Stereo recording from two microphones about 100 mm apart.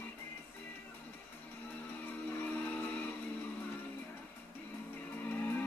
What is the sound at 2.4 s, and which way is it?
Music, 20° left (ahead or behind).